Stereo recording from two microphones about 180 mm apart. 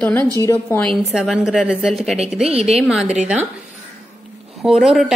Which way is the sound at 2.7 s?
5° right (ahead or behind).